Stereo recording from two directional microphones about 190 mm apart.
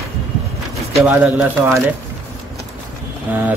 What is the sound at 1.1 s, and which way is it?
Speech, 10° right (ahead or behind).